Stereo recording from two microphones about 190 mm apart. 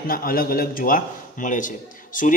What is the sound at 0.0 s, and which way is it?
A man's voice, 50° left (ahead or behind).